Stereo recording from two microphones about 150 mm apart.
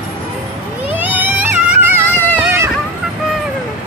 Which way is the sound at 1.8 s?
15° right (ahead or behind).